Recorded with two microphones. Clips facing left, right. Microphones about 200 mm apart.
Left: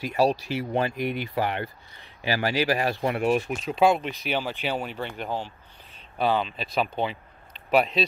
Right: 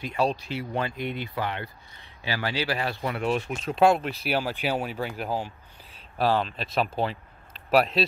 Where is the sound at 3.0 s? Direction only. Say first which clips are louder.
Left 4 dB; 15° left (ahead or behind).